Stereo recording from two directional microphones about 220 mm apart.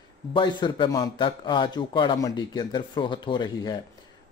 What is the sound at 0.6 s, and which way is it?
Speech, 20° left (ahead or behind).